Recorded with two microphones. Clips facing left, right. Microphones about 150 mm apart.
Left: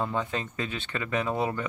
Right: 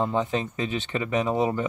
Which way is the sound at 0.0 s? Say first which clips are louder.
Right 5 dB; 20° right (ahead or behind).